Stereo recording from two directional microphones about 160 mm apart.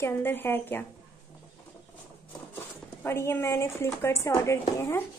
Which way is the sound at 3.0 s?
15° left (ahead or behind).